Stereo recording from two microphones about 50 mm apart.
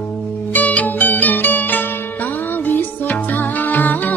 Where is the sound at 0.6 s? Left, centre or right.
Left.